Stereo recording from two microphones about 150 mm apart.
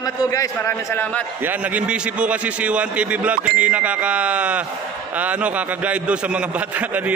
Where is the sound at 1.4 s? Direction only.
10° right (ahead or behind).